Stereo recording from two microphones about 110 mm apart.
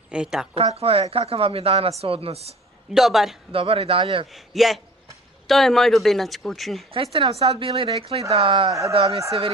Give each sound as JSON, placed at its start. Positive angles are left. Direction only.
{"t": 0.1, "sound": "speech", "side_deg": -5}
{"t": 0.7, "sound": "speech", "side_deg": -65}
{"t": 2.9, "sound": "speech", "side_deg": 0}
{"t": 3.5, "sound": "speech", "side_deg": -60}
{"t": 4.3, "sound": "speech", "side_deg": 0}
{"t": 6.9, "sound": "speech", "side_deg": -60}